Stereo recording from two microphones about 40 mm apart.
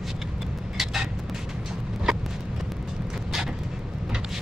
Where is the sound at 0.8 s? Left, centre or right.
Centre.